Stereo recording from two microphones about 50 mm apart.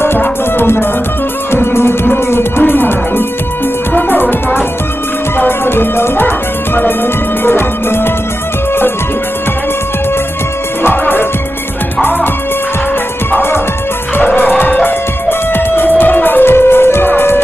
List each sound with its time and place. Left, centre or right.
0.0 s music: left
10.8 s music: left
13.3 s music: left
14.2 s music: left